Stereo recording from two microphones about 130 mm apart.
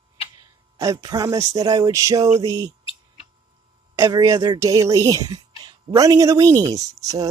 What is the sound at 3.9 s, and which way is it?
Speech, 25° right (ahead or behind).